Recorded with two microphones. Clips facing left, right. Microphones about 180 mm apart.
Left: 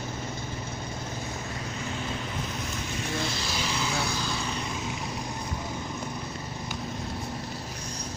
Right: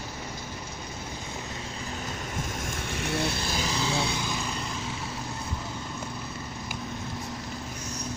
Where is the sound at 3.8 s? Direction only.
25° right (ahead or behind).